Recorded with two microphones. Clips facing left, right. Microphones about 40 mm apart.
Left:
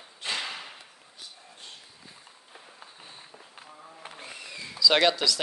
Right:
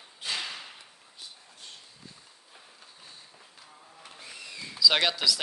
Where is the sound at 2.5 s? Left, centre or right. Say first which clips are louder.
Left 5 dB; left.